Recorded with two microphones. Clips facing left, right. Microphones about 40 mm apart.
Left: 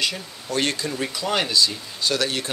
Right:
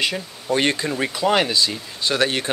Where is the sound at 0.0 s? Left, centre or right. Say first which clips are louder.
Right 3 dB; right.